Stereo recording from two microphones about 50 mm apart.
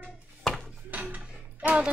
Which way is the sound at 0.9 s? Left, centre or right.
Right.